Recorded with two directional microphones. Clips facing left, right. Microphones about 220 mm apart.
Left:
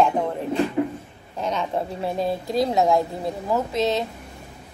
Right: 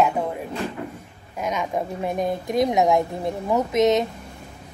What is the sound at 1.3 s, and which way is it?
A woman's voice, 10° right (ahead or behind).